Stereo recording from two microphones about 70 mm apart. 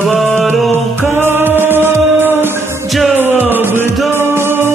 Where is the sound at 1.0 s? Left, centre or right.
Right.